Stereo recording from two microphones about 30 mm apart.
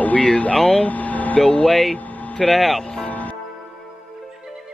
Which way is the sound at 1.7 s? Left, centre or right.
Centre.